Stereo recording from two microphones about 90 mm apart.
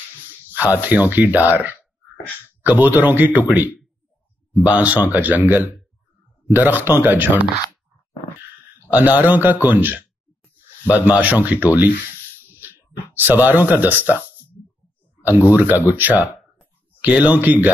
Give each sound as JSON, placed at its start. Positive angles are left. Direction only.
{"t": 0.2, "sound": "speech", "side_deg": -20}
{"t": 8.9, "sound": "speech", "side_deg": -20}
{"t": 13.1, "sound": "speech", "side_deg": -20}